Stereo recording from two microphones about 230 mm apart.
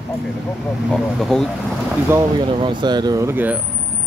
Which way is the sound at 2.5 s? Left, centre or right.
Right.